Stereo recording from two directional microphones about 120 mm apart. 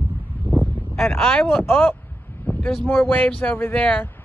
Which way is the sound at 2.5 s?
15° left (ahead or behind).